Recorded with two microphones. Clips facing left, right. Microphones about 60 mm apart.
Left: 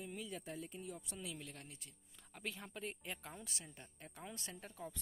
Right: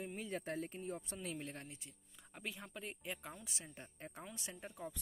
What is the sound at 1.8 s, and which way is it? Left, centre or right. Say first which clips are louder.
Music: right 2 dB; centre.